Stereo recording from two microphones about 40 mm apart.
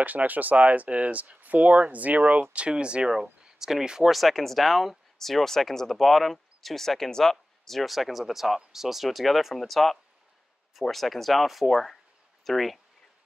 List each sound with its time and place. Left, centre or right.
0.0 s speech: right
2.5 s speech: right
3.1 s speech: centre
4.1 s speech: centre